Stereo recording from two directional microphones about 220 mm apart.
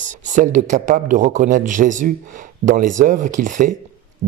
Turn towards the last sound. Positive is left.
turn(degrees=-35)  # may be behind; listen again after turning